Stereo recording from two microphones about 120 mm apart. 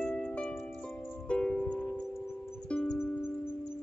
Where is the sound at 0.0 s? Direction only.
10° left (ahead or behind).